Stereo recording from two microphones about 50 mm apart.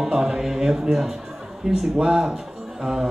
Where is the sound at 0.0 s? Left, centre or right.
Centre.